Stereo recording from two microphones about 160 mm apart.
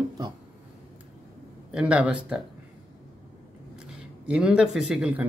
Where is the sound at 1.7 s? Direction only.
5° right (ahead or behind).